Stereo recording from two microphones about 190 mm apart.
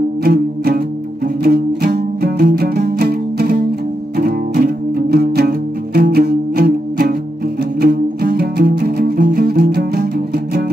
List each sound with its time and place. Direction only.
0.2 s music: 50° right (ahead or behind)